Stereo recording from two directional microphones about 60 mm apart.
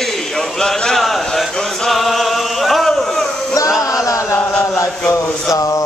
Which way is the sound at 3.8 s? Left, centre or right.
Left.